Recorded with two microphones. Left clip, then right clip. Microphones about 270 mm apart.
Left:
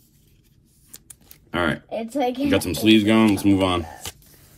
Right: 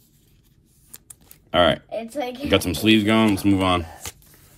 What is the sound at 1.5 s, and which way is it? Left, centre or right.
Speech, centre.